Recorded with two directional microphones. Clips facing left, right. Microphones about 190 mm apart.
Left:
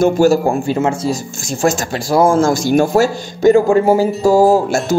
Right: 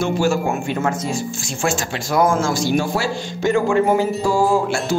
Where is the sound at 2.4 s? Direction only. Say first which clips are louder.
Left 6 dB; 45° left (ahead or behind).